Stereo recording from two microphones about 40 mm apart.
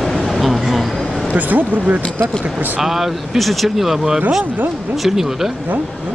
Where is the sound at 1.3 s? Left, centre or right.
Right.